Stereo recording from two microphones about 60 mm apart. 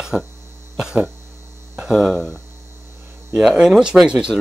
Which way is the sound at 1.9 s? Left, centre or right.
Centre.